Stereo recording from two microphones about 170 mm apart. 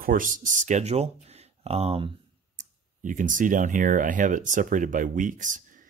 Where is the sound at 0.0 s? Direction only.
55° right (ahead or behind); by 2.0 s 35° right (ahead or behind).